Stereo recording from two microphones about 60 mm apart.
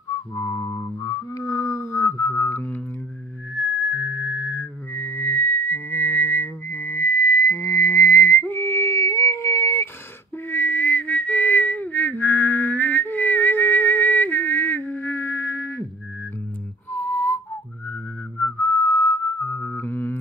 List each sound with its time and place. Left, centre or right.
0.3 s music: left
1.0 s music: left
1.5 s a sound: left
8.0 s whistling: left
10.5 s whistling: left
16.9 s music: left
18.4 s whistling: left
18.9 s a sound: left